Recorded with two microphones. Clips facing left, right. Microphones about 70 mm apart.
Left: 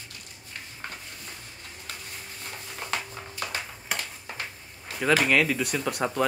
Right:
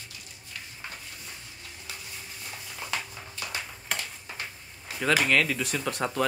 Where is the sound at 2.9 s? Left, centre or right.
Left.